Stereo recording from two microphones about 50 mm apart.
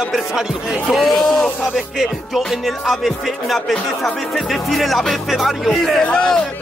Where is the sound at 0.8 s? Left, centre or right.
Centre.